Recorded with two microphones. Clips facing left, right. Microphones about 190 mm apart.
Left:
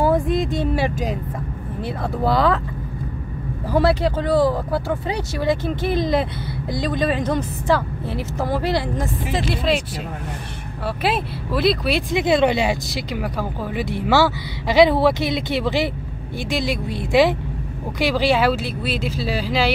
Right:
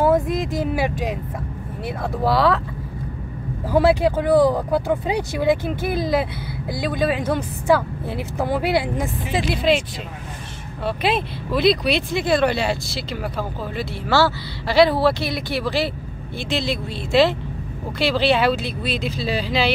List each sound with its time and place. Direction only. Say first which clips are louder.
0.0 s a sound: even; centre (ahead or behind)
2.2 s speech: even; centre (ahead or behind)
3.7 s a woman's voice: right 2 dB; 10° right (ahead or behind)
11.0 s speech: even; 5° left (ahead or behind)
12.1 s speech: left 4 dB; 20° left (ahead or behind)